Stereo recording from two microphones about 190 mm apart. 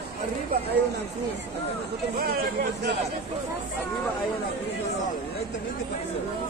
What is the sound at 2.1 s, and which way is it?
Speech, 50° right (ahead or behind).